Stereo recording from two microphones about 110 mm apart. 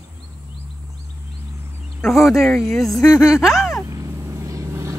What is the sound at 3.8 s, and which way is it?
Vehicle, 30° right (ahead or behind).